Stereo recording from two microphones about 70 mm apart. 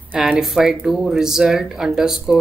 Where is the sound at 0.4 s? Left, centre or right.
Centre.